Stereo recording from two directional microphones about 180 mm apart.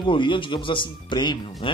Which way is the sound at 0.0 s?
25° left (ahead or behind).